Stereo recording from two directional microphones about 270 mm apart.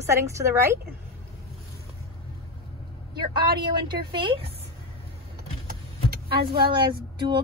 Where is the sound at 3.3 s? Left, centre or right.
Centre.